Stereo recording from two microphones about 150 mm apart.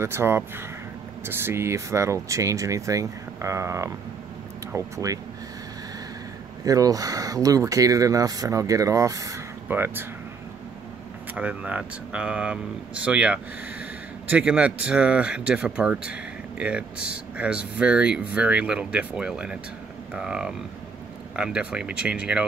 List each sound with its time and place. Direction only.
0.0 s speech: 15° right (ahead or behind)
6.6 s speech: 25° right (ahead or behind)
11.3 s speech: 10° right (ahead or behind)